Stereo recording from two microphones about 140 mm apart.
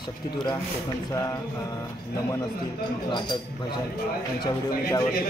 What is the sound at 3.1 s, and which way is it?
Speech, 30° left (ahead or behind).